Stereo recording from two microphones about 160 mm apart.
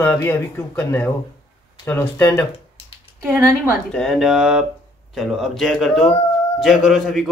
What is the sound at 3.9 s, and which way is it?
A man's voice, centre (ahead or behind).